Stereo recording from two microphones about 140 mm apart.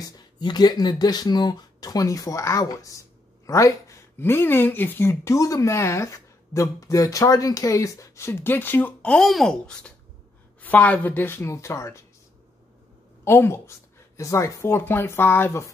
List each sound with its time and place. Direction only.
0.0 s speech: 30° left (ahead or behind)
13.2 s speech: 20° left (ahead or behind)